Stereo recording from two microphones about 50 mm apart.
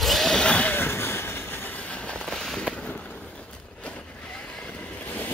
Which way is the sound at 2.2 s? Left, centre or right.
Centre.